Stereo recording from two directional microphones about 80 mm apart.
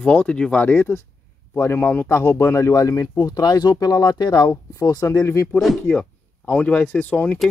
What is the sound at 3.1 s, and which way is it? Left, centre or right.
Speech, left.